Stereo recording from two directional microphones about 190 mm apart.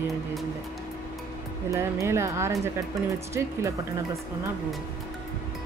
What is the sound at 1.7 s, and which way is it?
Speech, 15° right (ahead or behind).